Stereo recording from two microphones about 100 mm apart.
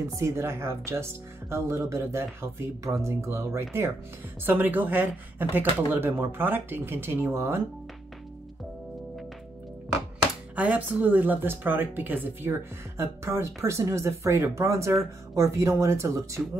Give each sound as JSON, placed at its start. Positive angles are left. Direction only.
{"t": 0.0, "sound": "a woman's voice", "side_deg": -30}
{"t": 10.5, "sound": "a woman's voice", "side_deg": -15}